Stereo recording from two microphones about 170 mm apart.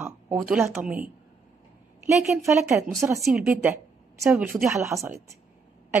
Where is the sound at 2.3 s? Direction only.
15° right (ahead or behind).